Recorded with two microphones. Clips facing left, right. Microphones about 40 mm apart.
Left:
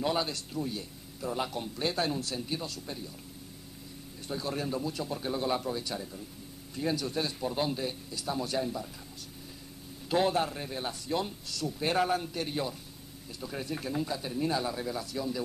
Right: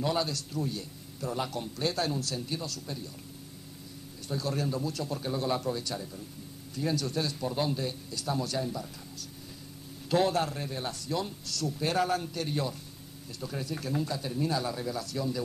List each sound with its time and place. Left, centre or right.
0.0 s a man's voice: centre
4.3 s a man's voice: centre
10.0 s a man's voice: centre